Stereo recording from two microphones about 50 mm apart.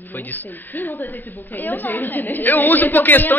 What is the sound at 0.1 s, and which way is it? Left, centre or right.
A woman's voice, left.